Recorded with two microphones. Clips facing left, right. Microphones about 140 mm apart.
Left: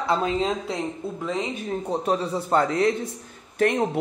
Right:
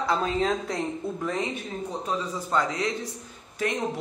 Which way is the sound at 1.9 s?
65° left (ahead or behind).